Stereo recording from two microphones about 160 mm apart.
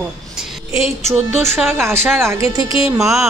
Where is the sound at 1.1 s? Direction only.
15° right (ahead or behind).